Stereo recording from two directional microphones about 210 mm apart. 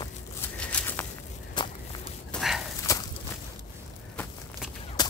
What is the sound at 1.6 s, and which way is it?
Walk, 20° left (ahead or behind).